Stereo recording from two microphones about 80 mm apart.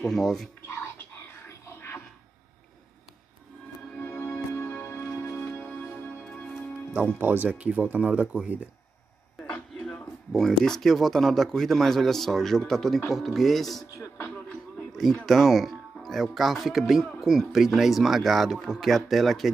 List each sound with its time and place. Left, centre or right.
0.0 s speech: centre
1.5 s music: left
3.9 s music: left
5.6 s music: centre
7.2 s speech: right
9.8 s a sound: centre
10.6 s speech: centre
14.2 s music: left
14.9 s speech: centre